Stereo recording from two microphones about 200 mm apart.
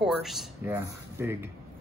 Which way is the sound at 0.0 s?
Centre (ahead or behind).